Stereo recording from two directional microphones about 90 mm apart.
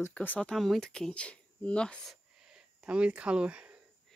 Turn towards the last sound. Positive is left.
turn(degrees=-10)  # may be behind; listen again after turning